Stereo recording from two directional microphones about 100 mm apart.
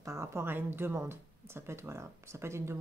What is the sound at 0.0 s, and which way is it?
Speech, 30° right (ahead or behind).